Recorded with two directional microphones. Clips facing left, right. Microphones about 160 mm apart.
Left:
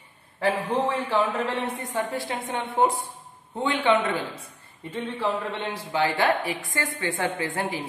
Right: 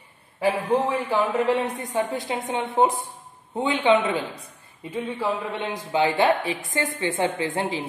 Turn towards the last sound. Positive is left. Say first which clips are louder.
# right 3 dB
turn(degrees=-20)  # may be behind; listen again after turning